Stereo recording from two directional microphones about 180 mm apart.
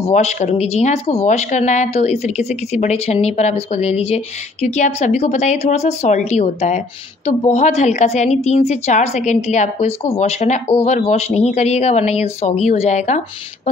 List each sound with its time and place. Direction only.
0.1 s speech: 40° left (ahead or behind)